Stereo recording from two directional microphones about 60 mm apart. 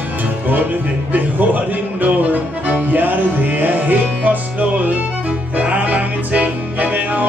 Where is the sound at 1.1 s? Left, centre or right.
Right.